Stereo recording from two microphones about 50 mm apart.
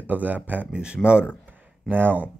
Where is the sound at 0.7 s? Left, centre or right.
Centre.